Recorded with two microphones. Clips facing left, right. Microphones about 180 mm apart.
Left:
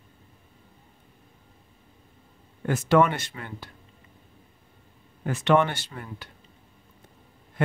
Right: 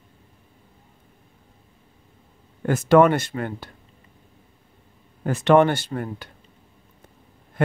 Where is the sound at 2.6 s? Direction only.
45° right (ahead or behind).